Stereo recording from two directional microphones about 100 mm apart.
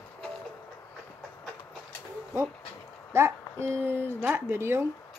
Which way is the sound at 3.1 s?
25° right (ahead or behind).